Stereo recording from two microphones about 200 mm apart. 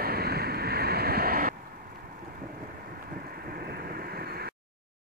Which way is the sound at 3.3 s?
50° right (ahead or behind).